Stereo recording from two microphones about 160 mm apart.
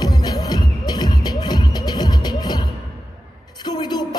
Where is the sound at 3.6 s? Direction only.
25° left (ahead or behind).